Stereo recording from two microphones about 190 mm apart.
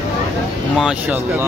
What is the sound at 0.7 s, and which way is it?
Speech, 5° right (ahead or behind).